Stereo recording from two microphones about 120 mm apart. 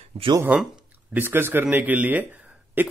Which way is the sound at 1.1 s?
20° right (ahead or behind).